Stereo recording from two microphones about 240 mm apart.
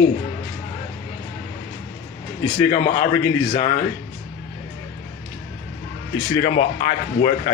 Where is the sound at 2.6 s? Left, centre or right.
Left.